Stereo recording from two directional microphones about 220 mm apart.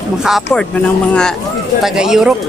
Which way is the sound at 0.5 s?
5° left (ahead or behind).